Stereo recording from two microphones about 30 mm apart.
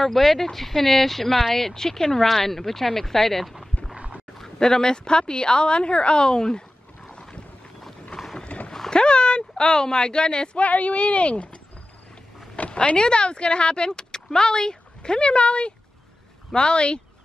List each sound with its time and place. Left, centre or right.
0.0 s speech: centre
4.6 s a woman's voice: left
7.2 s boat: left
8.1 s mechanisms: left
8.5 s a sound: left
8.9 s a sound: left
10.6 s speech: left
12.7 s speech: left